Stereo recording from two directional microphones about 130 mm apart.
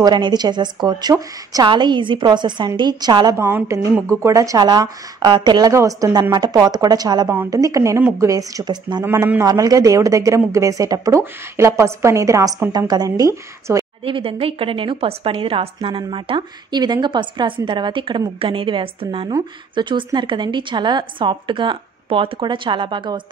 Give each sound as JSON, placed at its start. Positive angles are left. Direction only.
{"t": 0.0, "sound": "a woman's voice", "side_deg": -35}
{"t": 3.3, "sound": "a man's voice", "side_deg": -20}
{"t": 9.0, "sound": "a man's voice", "side_deg": -20}
{"t": 14.0, "sound": "a woman's voice", "side_deg": -45}